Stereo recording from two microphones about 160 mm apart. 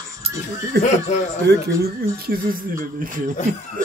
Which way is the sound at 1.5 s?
90° right.